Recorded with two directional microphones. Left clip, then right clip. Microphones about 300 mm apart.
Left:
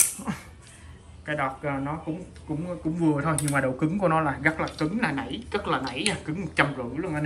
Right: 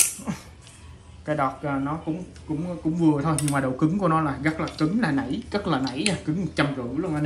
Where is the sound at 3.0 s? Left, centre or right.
Centre.